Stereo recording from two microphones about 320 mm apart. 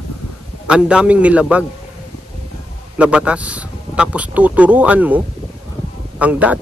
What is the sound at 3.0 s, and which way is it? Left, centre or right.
Speech, centre.